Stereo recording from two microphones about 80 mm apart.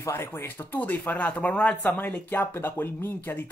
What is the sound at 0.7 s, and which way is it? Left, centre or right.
Speech, centre.